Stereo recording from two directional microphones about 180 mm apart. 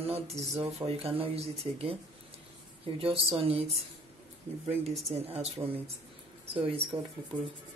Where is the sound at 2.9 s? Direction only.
30° right (ahead or behind).